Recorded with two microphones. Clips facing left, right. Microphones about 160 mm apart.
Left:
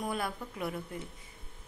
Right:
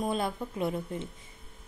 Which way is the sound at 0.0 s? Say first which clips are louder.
Right 5 dB; 25° right (ahead or behind).